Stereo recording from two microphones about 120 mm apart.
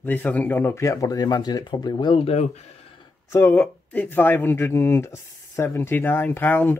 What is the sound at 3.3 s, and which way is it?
Speech, 15° left (ahead or behind).